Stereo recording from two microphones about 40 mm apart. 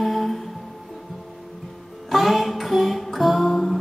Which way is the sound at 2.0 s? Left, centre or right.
Centre.